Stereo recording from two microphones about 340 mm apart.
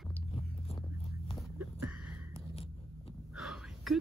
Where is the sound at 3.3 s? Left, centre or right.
Centre.